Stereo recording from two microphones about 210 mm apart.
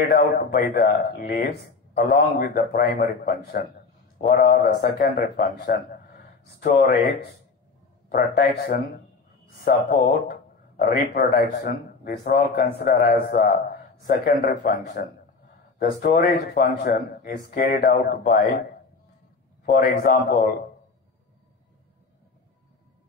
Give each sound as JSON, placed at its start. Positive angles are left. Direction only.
{"t": 0.1, "sound": "speech", "side_deg": 45}
{"t": 8.1, "sound": "speech", "side_deg": 45}
{"t": 19.6, "sound": "speech", "side_deg": 45}